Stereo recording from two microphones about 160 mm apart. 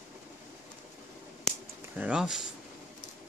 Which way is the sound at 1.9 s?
5° right (ahead or behind).